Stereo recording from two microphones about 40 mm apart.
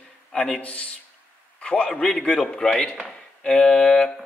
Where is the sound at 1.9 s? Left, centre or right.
Centre.